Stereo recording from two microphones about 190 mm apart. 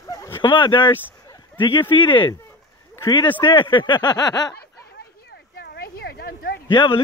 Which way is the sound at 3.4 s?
25° left (ahead or behind).